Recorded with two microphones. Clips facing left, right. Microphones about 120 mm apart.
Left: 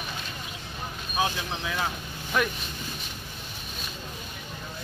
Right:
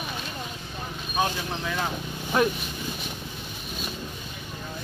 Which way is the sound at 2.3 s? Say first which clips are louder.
Right 4 dB; 30° right (ahead or behind).